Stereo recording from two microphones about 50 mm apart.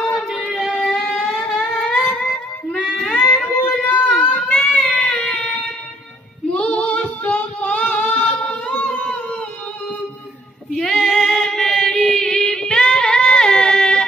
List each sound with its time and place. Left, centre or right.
0.0 s singing: centre
0.7 s a sound: centre
2.0 s female singing: left
3.4 s a sound: centre
3.8 s child singing: left
5.2 s a sound: centre
6.5 s female singing: left
7.9 s singing: left
10.9 s music: centre